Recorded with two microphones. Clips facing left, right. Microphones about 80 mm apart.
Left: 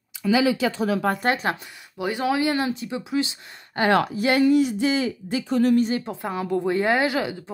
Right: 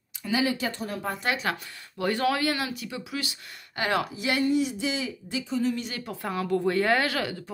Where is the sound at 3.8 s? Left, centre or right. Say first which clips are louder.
Left 7 dB; left.